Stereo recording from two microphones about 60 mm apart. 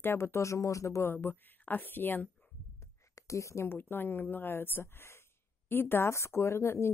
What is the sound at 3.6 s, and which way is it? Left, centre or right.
Speech, left.